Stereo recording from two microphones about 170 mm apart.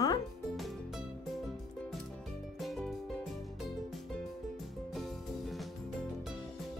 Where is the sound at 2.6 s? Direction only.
Centre (ahead or behind).